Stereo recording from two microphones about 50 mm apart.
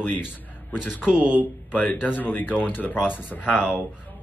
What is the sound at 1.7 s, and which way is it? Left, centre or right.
A man's voice, left.